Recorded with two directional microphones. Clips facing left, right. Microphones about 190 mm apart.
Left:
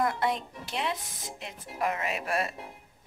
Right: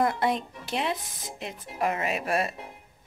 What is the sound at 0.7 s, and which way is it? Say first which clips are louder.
Speech: right 3 dB; 35° right (ahead or behind).